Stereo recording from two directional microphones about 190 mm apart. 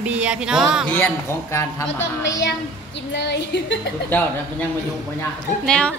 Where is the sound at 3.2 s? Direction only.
65° left (ahead or behind).